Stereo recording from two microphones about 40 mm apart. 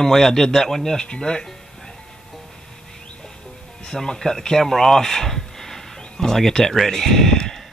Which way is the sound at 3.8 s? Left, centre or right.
Centre.